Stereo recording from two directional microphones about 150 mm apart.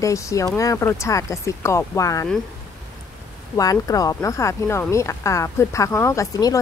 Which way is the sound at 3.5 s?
25° left (ahead or behind).